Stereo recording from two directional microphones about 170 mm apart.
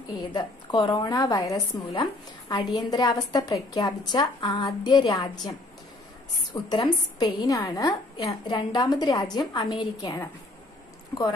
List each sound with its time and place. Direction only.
0.3 s a woman's voice: 25° left (ahead or behind)
6.5 s a woman's voice: 25° left (ahead or behind)